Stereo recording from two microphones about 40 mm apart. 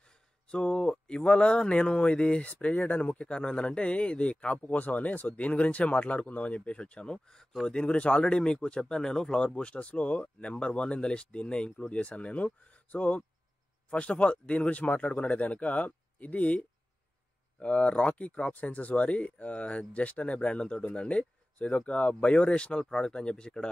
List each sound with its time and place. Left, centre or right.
0.5 s speech: left
9.0 s speech: centre
9.4 s speech: left